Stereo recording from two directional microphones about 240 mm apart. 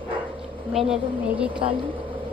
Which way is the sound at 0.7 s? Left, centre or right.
Centre.